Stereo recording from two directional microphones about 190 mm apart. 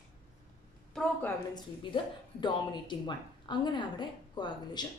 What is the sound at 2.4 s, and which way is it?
A woman's voice, 25° left (ahead or behind).